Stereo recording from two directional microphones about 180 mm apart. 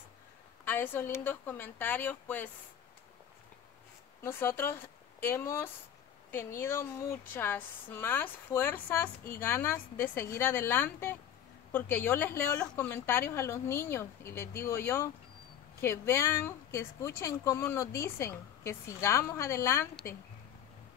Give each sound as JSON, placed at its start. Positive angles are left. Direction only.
{"t": 0.7, "sound": "speech", "side_deg": 10}
{"t": 4.2, "sound": "speech", "side_deg": 15}